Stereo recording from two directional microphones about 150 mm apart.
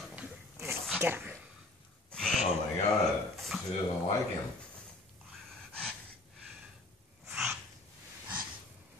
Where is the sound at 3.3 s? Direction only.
Centre (ahead or behind).